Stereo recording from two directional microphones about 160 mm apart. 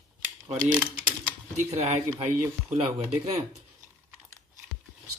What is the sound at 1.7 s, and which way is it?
Speech, 40° right (ahead or behind).